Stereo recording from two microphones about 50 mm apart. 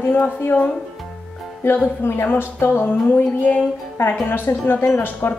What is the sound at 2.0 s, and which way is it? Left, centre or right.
Speech, left.